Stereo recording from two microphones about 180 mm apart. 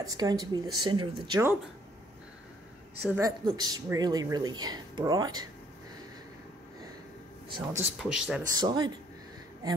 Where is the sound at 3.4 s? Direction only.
20° right (ahead or behind).